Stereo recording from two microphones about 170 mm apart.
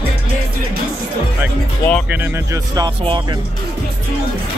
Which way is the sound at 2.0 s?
10° right (ahead or behind).